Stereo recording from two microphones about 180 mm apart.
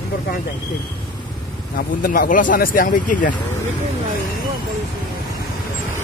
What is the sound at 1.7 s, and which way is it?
Speech, 50° left (ahead or behind).